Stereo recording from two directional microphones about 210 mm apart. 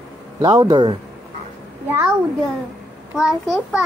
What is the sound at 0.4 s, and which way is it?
Speech, 20° right (ahead or behind).